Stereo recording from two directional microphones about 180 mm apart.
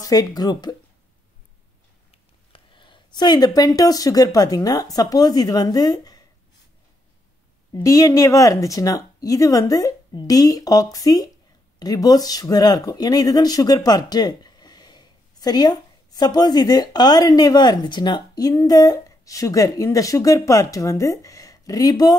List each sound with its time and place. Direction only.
0.0 s speech: 20° left (ahead or behind)
2.5 s speech: 25° left (ahead or behind)
7.7 s speech: 20° left (ahead or behind)